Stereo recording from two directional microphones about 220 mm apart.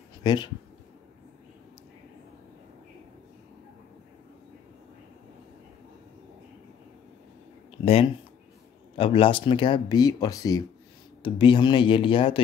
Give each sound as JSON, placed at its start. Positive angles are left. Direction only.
{"t": 0.2, "sound": "speech", "side_deg": 20}
{"t": 7.8, "sound": "speech", "side_deg": 25}